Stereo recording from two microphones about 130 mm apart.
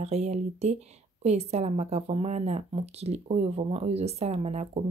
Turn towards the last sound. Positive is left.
turn(degrees=-60)  # may be behind; listen again after turning